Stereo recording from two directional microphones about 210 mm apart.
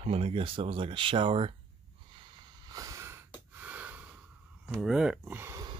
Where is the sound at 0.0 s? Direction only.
30° right (ahead or behind).